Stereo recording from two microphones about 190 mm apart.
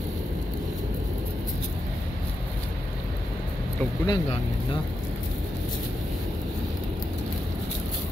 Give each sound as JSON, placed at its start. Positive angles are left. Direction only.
{"t": 4.0, "sound": "speech", "side_deg": 20}